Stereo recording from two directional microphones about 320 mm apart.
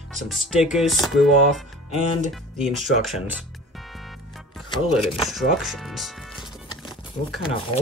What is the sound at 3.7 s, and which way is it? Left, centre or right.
Music, centre.